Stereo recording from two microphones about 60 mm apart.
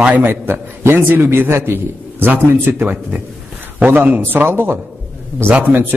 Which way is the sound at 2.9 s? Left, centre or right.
Right.